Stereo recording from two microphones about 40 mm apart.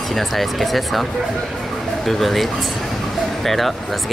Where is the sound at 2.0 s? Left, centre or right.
Centre.